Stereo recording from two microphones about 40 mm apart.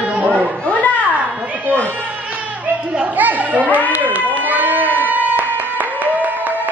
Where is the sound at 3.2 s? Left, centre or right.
Right.